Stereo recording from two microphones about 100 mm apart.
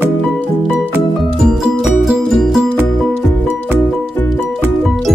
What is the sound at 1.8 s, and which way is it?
Music, 5° right (ahead or behind).